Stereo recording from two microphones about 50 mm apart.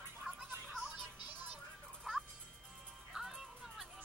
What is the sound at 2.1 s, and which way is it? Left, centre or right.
Music, centre.